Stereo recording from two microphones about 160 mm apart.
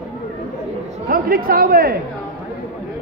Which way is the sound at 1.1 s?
65° right (ahead or behind).